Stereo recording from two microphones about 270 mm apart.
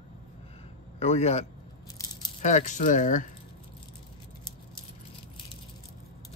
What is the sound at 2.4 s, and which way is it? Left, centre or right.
Speech, left.